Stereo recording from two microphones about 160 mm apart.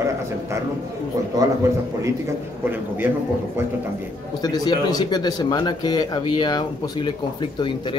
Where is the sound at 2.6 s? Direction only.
10° right (ahead or behind).